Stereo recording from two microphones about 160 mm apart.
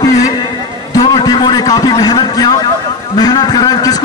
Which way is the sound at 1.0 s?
25° left (ahead or behind).